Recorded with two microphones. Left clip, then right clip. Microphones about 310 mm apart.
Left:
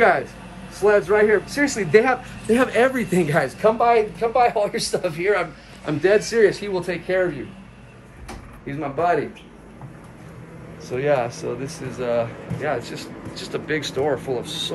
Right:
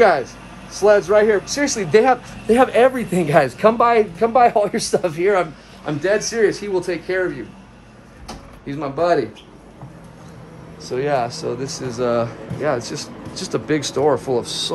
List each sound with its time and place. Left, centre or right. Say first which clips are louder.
0.0 s speech: right 3 dB; centre
3.3 s speech: right 6 dB; right
5.9 s speech: left 1 dB; centre
8.6 s speech: right 3 dB; centre
10.8 s speech: right 1 dB; centre
14.3 s speech: right 5 dB; right